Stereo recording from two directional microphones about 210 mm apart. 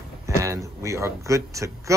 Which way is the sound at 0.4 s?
15° right (ahead or behind).